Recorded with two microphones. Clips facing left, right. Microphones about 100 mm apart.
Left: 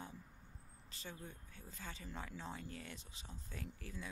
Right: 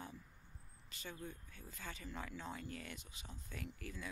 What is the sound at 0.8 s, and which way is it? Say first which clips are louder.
Speech: right 2 dB; 30° left (ahead or behind).